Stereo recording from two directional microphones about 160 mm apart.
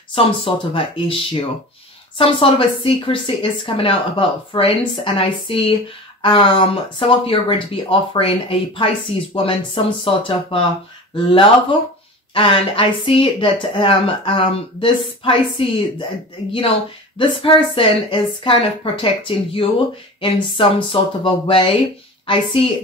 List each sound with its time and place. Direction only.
0.1 s a woman's voice: 35° left (ahead or behind)
17.2 s a woman's voice: 35° left (ahead or behind)